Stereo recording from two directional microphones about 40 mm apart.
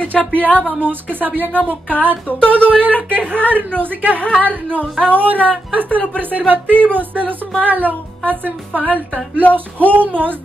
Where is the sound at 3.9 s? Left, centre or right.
Right.